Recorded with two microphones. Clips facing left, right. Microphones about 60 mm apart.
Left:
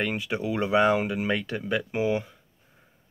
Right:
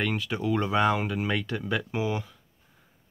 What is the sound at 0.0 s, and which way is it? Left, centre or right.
Speech, centre.